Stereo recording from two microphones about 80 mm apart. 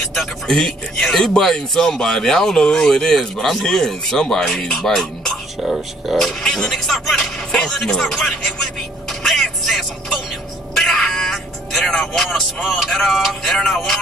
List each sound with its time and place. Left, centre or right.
0.0 s speech: centre
9.2 s music: centre
10.8 s speech: centre